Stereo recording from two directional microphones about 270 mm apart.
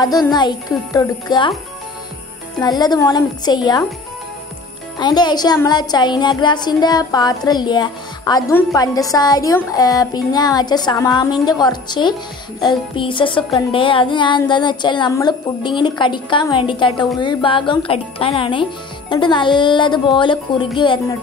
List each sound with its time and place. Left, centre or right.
0.3 s speech: centre
2.6 s speech: centre
4.9 s speech: centre